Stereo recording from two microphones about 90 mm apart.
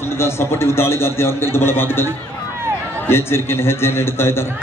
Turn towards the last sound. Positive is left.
turn(degrees=25)  # may be behind; listen again after turning